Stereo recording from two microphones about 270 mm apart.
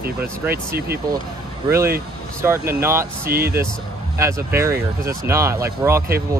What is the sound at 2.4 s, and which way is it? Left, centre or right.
Speech, centre.